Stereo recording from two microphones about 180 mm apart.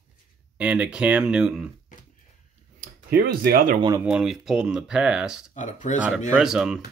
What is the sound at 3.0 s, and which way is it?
Speech, 60° right (ahead or behind).